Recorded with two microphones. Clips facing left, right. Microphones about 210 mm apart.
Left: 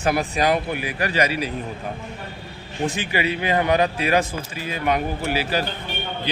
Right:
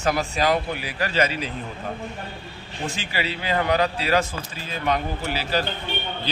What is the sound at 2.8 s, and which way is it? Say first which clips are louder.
Speech: left 5 dB; 15° left (ahead or behind).